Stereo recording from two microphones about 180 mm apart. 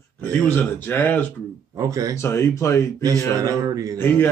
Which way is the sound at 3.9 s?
10° left (ahead or behind).